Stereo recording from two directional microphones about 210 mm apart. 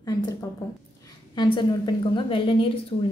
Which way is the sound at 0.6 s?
15° left (ahead or behind).